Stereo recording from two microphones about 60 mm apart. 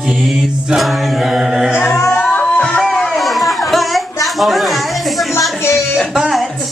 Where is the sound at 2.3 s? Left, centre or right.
Centre.